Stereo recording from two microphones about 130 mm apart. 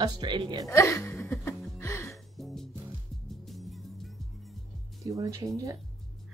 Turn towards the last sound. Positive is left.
turn(degrees=-25)  # may be behind; listen again after turning